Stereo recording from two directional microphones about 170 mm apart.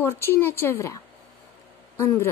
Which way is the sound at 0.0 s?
15° left (ahead or behind).